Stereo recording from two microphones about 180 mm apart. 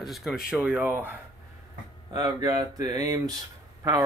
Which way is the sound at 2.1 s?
20° right (ahead or behind).